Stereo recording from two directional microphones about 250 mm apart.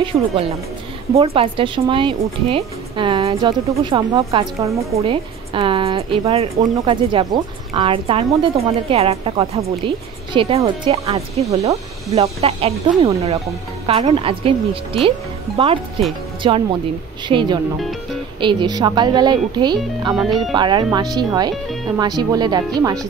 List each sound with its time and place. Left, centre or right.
0.0 s a woman's voice: right
20.2 s speech: centre
20.5 s speech: centre